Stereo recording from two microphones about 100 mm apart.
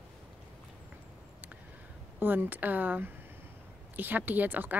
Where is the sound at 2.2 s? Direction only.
20° right (ahead or behind).